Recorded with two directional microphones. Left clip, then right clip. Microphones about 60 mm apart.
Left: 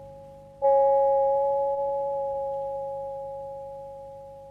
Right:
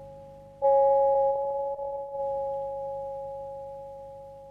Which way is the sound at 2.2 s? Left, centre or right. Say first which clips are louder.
Left 1 dB; centre.